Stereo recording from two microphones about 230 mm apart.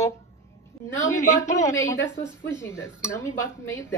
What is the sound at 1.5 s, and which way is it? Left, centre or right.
Speech, left.